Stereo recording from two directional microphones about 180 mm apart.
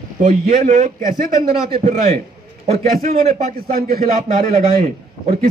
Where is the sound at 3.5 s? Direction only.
55° right (ahead or behind).